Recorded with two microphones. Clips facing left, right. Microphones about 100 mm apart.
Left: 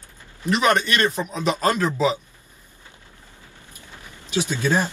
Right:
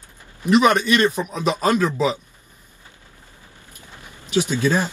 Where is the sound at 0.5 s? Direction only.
10° right (ahead or behind).